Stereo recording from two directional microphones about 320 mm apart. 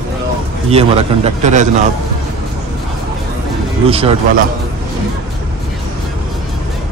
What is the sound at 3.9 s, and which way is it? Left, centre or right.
Speech, centre.